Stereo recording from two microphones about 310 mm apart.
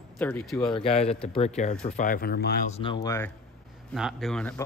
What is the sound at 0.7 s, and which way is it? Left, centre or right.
Speech, centre.